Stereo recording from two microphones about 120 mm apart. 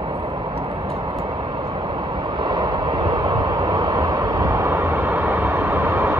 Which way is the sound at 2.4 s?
40° right (ahead or behind).